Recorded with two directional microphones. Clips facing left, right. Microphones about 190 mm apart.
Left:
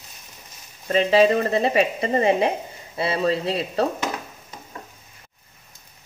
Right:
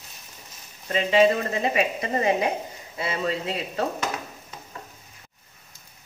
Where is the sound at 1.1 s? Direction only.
35° left (ahead or behind).